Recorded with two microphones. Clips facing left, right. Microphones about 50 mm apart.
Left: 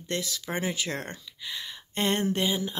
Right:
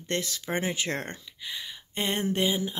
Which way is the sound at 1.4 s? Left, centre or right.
Centre.